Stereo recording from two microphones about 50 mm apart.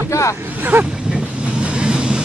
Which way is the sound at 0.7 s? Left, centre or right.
Right.